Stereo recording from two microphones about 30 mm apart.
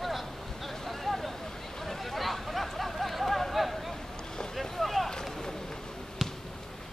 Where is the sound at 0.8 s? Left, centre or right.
Centre.